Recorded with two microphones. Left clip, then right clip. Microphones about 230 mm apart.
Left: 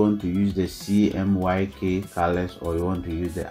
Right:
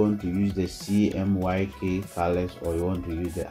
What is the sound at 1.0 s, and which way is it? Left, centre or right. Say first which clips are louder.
Speech: left 3 dB; centre.